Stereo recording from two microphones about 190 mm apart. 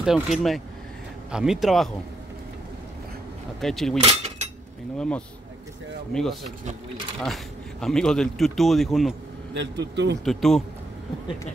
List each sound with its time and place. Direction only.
0.0 s speech: centre (ahead or behind)
3.6 s speech: centre (ahead or behind)
4.0 s cutlery: 30° right (ahead or behind)
4.9 s speech: 5° left (ahead or behind)
7.8 s speech: 5° left (ahead or behind)
9.5 s a man's voice: 65° right (ahead or behind)
10.2 s speech: centre (ahead or behind)